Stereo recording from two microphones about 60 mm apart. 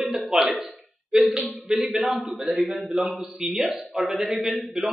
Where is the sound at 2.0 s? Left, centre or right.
Centre.